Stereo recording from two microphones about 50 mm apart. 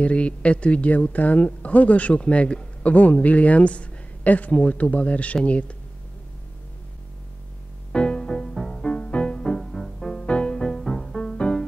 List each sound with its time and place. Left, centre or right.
0.0 s speech: left
7.9 s music: centre